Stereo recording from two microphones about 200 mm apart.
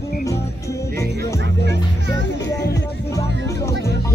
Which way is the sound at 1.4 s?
60° right (ahead or behind).